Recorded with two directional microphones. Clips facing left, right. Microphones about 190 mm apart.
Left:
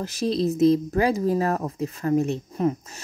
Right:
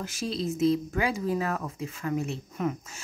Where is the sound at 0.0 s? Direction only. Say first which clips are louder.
Left 8 dB; 40° left (ahead or behind).